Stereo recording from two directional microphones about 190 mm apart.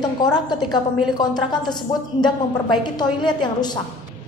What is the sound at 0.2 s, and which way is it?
A woman's voice, 20° left (ahead or behind).